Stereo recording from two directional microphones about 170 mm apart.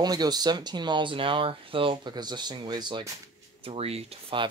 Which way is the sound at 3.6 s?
35° right (ahead or behind).